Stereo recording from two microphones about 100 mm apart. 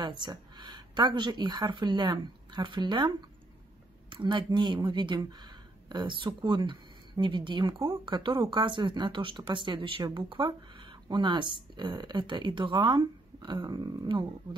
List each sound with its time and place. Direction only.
0.0 s speech: 50° right (ahead or behind)
4.1 s speech: 50° right (ahead or behind)